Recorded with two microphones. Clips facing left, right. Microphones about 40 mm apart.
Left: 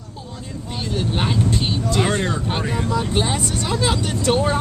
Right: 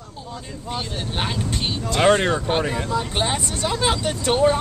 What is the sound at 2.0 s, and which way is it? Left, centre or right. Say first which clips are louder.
Speech: right 5 dB; right.